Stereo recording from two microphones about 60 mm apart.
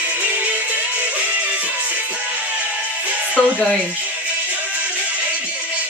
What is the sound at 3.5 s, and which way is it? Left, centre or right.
Speech, left.